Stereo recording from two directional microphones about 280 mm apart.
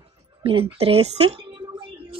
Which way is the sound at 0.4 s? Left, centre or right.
Centre.